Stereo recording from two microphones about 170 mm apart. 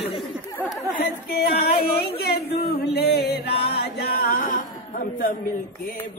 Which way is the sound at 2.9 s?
70° left (ahead or behind).